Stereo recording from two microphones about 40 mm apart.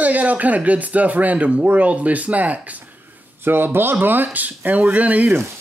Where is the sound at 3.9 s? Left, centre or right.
Right.